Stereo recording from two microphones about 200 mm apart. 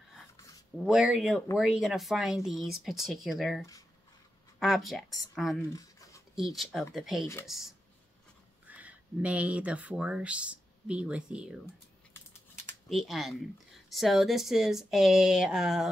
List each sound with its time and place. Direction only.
0.7 s speech: 5° right (ahead or behind)
5.8 s a sound: 15° left (ahead or behind)
6.3 s speech: centre (ahead or behind)
12.8 s speech: centre (ahead or behind)